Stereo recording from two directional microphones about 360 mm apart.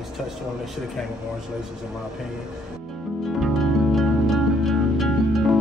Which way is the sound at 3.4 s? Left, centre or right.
Centre.